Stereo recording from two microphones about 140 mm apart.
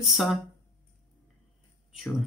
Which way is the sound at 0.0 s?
Centre (ahead or behind).